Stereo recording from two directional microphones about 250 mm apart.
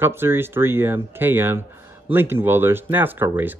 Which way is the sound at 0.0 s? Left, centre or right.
Centre.